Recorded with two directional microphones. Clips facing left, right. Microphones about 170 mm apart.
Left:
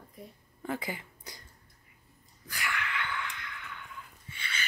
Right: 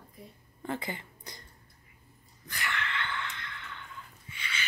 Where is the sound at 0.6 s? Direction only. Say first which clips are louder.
Even; 10° left (ahead or behind).